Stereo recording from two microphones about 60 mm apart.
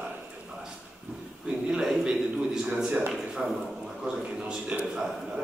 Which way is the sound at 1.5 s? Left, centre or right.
Centre.